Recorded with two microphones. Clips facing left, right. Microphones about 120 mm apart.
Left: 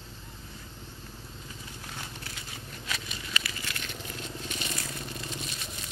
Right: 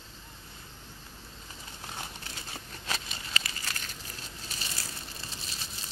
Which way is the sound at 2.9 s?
30° right (ahead or behind).